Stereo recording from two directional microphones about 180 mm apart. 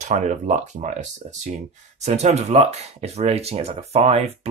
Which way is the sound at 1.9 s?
40° right (ahead or behind).